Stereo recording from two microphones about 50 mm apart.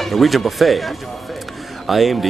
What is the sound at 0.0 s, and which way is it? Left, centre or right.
Speech, centre.